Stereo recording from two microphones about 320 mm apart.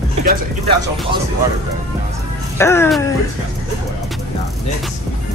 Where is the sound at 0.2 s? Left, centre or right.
Right.